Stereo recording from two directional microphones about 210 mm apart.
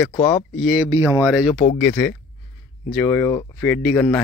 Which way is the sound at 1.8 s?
10° left (ahead or behind).